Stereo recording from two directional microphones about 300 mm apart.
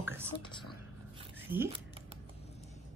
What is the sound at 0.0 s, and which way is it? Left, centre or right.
Whispering, centre.